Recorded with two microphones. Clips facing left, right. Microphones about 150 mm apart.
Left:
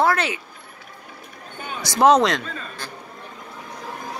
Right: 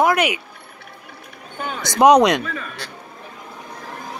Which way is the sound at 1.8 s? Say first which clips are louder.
Right 3 dB; 20° right (ahead or behind).